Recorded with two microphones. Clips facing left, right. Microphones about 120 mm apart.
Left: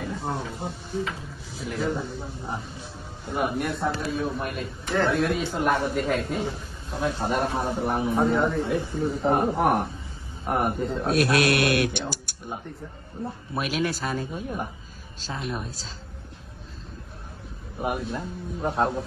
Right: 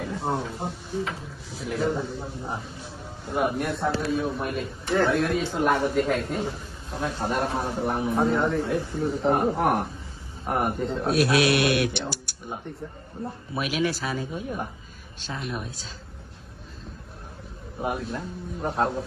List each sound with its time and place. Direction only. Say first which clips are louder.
0.0 s speech: right 2 dB; centre (ahead or behind)
11.3 s speech: even; 50° left (ahead or behind)
13.8 s speech: right 1 dB; 50° left (ahead or behind)
14.3 s speech: even; centre (ahead or behind)
15.1 s a woman's voice: left 1 dB; 35° left (ahead or behind)
17.7 s speech: left 1 dB; 5° left (ahead or behind)